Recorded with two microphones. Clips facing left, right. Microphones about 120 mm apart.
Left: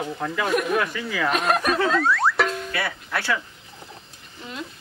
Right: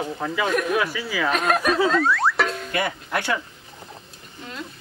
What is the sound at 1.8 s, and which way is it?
Music, centre (ahead or behind).